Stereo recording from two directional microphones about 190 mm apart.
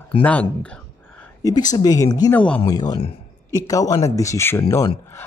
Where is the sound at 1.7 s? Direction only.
20° left (ahead or behind).